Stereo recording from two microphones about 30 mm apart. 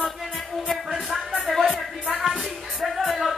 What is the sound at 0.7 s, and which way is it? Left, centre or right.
Music, centre.